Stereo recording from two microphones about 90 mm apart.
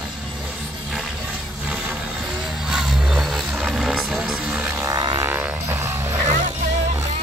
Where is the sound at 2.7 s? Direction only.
5° right (ahead or behind).